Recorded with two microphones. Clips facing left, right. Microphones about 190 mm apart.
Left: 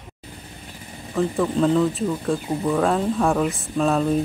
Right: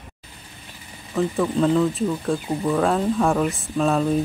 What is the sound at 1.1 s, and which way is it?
Speech, centre (ahead or behind).